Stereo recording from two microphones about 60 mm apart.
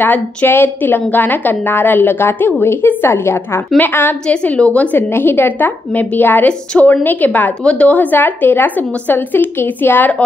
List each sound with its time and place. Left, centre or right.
0.5 s a woman's voice: left
4.3 s a woman's voice: left
4.9 s a woman's voice: left